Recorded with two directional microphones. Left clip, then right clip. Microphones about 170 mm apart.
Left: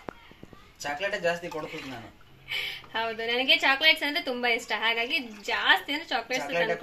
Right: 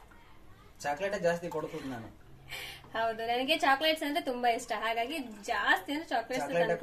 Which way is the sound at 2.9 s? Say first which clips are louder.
Left 2 dB; 5° left (ahead or behind).